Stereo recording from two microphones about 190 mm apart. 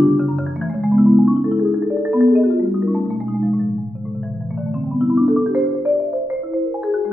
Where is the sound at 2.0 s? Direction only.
5° right (ahead or behind).